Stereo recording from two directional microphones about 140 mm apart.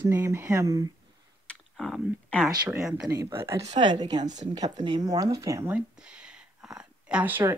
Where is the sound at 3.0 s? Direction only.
20° right (ahead or behind).